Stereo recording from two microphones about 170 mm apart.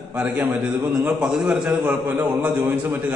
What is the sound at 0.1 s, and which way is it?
Mantra, 5° right (ahead or behind).